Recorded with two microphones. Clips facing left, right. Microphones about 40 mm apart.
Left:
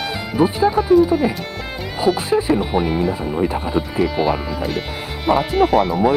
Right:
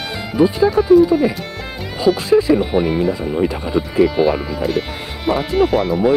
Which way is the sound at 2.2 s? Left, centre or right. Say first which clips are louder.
Right 4 dB; left.